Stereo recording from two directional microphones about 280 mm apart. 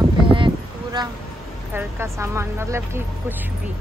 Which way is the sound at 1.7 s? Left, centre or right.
Centre.